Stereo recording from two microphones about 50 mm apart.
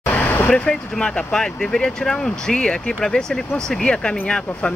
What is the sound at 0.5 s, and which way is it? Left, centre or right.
Speech, centre.